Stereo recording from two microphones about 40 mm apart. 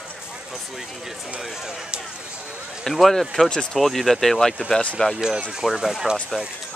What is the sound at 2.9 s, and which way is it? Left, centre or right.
Speech, centre.